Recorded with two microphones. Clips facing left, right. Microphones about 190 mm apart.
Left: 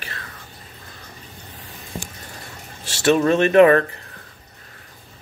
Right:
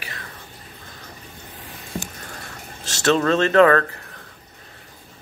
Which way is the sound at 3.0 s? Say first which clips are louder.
Left 2 dB; 15° left (ahead or behind).